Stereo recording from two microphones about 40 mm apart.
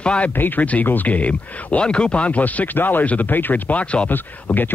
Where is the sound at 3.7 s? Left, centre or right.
Left.